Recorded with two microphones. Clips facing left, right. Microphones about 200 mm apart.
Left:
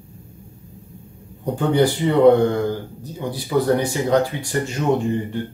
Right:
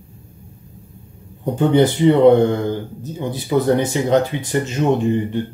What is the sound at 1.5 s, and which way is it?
Speech, 20° right (ahead or behind).